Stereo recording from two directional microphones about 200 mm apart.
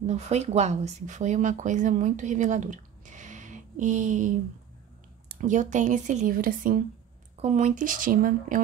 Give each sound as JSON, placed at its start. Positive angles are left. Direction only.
{"t": 0.0, "sound": "speech", "side_deg": -35}
{"t": 5.3, "sound": "speech", "side_deg": -40}